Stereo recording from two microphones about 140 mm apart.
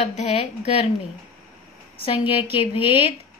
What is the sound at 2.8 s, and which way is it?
Speech, 40° left (ahead or behind).